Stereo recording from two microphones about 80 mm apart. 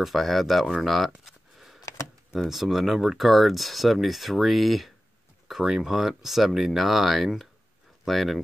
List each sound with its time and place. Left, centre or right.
0.0 s speech: centre
1.8 s a sound: left
2.3 s speech: centre